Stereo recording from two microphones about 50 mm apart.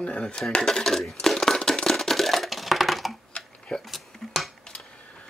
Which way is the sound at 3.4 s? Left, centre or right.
Centre.